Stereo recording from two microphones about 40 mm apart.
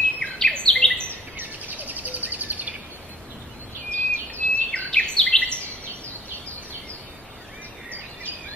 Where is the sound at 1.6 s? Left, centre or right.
Right.